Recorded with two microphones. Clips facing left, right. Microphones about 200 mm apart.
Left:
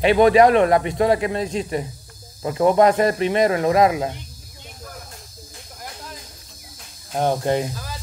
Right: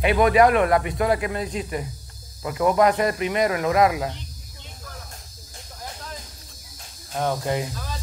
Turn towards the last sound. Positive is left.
turn(degrees=30)  # may be behind; listen again after turning